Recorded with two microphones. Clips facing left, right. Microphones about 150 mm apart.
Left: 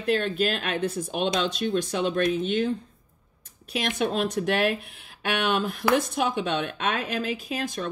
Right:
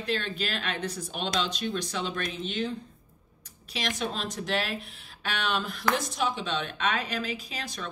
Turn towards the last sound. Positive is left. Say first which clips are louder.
# left 8 dB
turn(degrees=50)  # may be behind; listen again after turning